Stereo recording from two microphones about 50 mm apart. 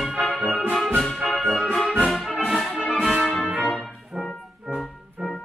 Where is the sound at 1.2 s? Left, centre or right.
Centre.